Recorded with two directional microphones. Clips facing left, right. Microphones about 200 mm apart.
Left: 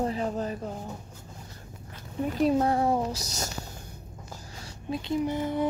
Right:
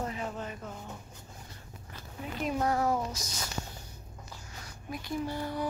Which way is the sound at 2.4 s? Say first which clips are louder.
Left 6 dB; 30° left (ahead or behind).